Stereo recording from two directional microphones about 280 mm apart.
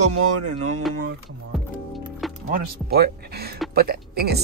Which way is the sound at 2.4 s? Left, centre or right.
Right.